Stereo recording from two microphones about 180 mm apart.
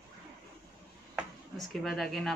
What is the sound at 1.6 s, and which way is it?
Speech, centre (ahead or behind).